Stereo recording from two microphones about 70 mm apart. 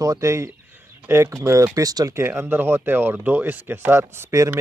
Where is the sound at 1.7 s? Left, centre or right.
Right.